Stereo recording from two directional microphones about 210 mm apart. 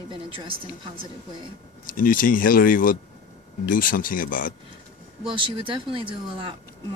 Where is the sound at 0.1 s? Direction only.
25° right (ahead or behind).